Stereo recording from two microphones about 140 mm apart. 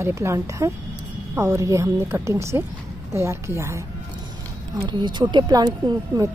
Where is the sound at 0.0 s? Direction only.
20° right (ahead or behind).